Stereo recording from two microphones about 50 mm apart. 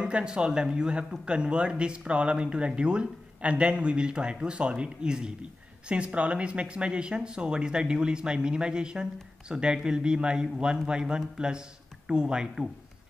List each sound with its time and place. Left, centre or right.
0.0 s speech: centre